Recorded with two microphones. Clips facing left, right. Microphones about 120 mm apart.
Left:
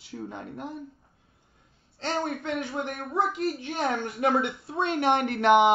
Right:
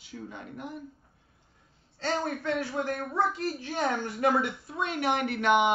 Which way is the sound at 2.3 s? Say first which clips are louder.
Even; 20° left (ahead or behind).